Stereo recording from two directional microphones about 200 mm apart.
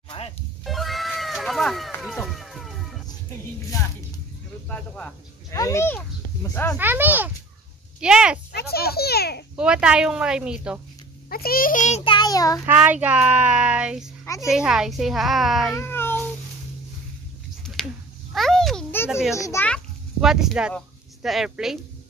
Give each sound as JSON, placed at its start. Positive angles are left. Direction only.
{"t": 0.1, "sound": "music", "side_deg": 30}
{"t": 0.7, "sound": "cat", "side_deg": 0}
{"t": 4.6, "sound": "a child's voice", "side_deg": 5}
{"t": 6.8, "sound": "a child's voice", "side_deg": -10}
{"t": 8.5, "sound": "a child's voice", "side_deg": 50}
{"t": 9.6, "sound": "a woman's voice", "side_deg": -5}
{"t": 11.2, "sound": "a child's voice", "side_deg": 50}
{"t": 12.6, "sound": "a child's voice", "side_deg": -10}
{"t": 15.7, "sound": "a sound", "side_deg": 10}
{"t": 18.3, "sound": "a sound", "side_deg": 0}
{"t": 19.0, "sound": "a woman's voice", "side_deg": -5}
{"t": 19.3, "sound": "a child's voice", "side_deg": 15}
{"t": 20.2, "sound": "a woman's voice", "side_deg": 0}